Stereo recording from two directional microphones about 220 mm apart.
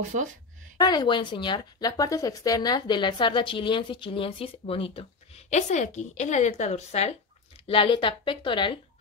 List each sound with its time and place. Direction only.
0.7 s a woman's voice: 20° left (ahead or behind)